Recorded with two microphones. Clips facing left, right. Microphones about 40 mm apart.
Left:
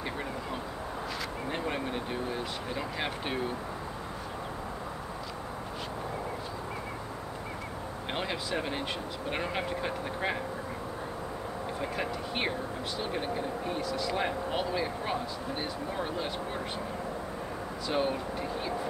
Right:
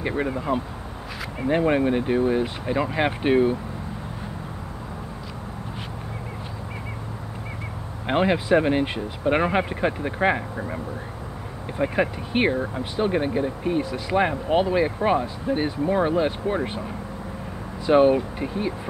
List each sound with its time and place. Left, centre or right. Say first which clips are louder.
0.0 s speech: right 10 dB; right
8.1 s speech: right 14 dB; right
11.8 s speech: right 13 dB; right
17.8 s speech: right 14 dB; right